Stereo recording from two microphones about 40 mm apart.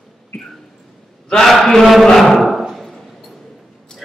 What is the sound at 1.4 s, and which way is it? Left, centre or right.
Speech, centre.